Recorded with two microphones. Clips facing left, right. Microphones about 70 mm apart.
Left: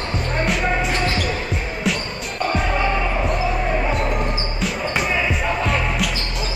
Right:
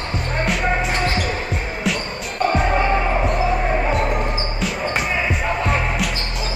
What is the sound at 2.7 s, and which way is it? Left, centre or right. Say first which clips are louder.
Basketball bounce: right 2 dB; right.